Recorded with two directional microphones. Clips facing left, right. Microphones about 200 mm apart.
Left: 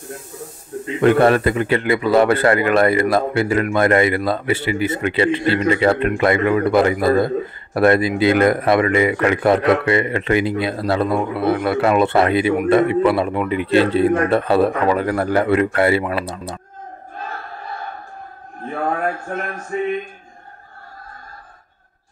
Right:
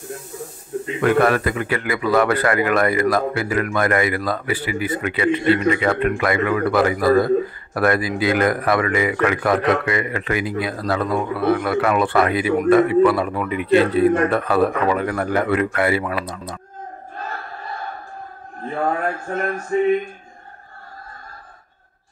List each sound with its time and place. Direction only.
1.0 s a man's voice: 25° left (ahead or behind)